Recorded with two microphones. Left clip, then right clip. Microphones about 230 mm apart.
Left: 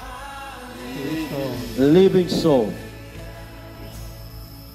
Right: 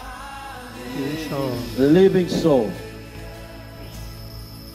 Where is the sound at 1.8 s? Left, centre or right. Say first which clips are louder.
Even; left.